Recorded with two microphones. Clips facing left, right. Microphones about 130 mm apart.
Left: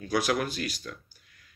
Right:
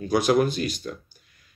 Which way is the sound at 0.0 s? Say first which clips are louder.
Right 7 dB; 25° right (ahead or behind).